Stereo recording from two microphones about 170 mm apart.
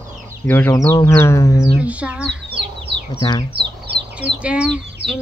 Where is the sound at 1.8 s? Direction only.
10° right (ahead or behind).